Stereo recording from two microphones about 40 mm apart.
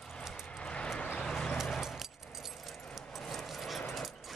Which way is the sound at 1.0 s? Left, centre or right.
Left.